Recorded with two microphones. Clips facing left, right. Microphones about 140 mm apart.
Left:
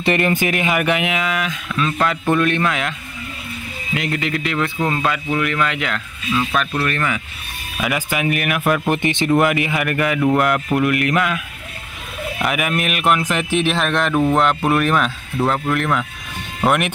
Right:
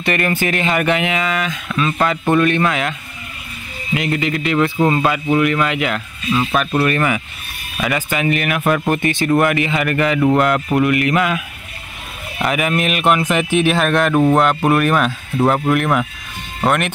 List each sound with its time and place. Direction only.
0.0 s speech: 25° left (ahead or behind); by 7.2 s 15° right (ahead or behind)
7.7 s speech: 5° left (ahead or behind)
8.9 s speech: 20° left (ahead or behind); by 11.4 s centre (ahead or behind)
12.4 s speech: 5° left (ahead or behind)
15.3 s speech: 15° right (ahead or behind)
16.6 s speech: 10° left (ahead or behind)